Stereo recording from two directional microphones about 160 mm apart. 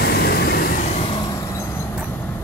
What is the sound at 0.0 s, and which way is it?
Vehicle, 80° left.